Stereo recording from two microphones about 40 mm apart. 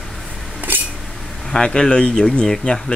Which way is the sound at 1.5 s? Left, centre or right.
Left.